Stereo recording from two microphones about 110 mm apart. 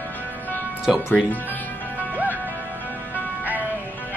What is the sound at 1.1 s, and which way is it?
Speech, 15° left (ahead or behind).